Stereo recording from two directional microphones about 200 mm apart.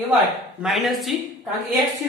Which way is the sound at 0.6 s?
Centre (ahead or behind).